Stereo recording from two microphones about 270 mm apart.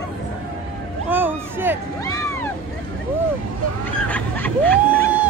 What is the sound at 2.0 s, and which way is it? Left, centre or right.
Cat, centre.